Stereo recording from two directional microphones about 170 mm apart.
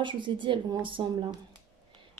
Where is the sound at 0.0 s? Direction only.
30° right (ahead or behind).